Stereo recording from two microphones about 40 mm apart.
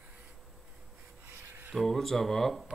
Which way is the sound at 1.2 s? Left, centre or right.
Right.